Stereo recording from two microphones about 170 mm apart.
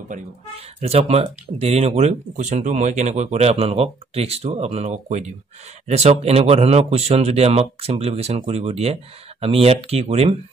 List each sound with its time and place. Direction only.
0.7 s speech: 35° right (ahead or behind)